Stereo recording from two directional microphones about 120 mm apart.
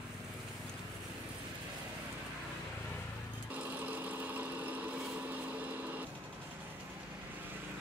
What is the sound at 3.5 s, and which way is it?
Vehicle, 15° right (ahead or behind).